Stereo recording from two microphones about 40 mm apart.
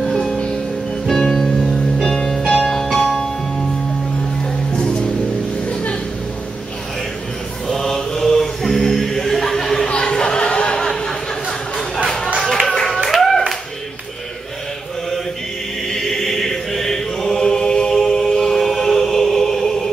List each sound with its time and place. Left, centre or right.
0.0 s music: centre
4.4 s music: left
5.7 s music: left
7.6 s chant: centre
9.8 s a sound: left
12.4 s music: centre
13.0 s music: centre
15.9 s chant: centre